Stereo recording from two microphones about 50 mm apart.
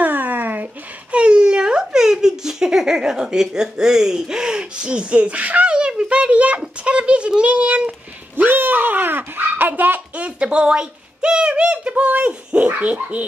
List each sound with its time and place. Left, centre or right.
0.0 s a sound: right
1.1 s speech: right
8.4 s speech: right